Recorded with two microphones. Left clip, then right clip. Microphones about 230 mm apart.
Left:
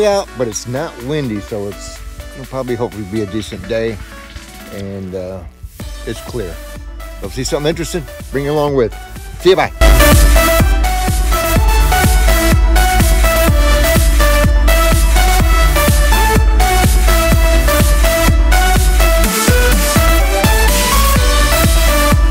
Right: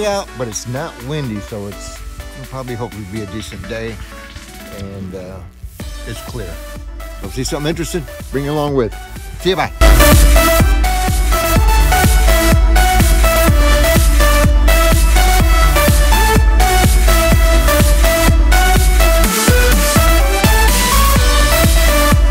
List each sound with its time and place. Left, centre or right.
0.7 s speech: left
3.7 s speech: centre
7.3 s speech: centre
9.8 s music: centre